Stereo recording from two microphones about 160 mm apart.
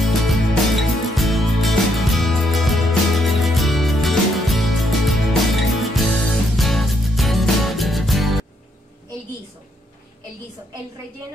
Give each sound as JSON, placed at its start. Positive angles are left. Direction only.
{"t": 0.0, "sound": "music", "side_deg": 0}